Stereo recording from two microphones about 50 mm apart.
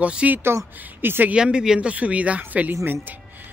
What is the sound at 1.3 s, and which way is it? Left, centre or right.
Speech, centre.